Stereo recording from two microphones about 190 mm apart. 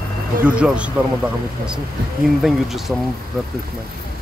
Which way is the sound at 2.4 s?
Centre (ahead or behind).